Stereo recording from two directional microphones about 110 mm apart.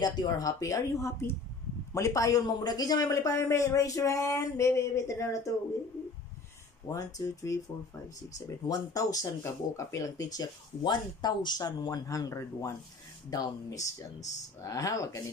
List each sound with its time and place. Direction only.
0.0 s speech: 40° left (ahead or behind)
6.9 s speech: 30° left (ahead or behind)